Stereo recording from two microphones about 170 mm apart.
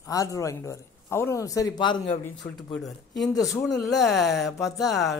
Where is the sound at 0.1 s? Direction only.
20° left (ahead or behind).